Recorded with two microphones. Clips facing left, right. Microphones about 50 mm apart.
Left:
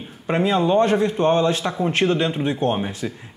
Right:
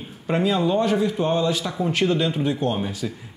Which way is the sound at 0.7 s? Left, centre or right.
Left.